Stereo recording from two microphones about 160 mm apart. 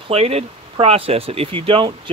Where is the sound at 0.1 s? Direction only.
40° right (ahead or behind).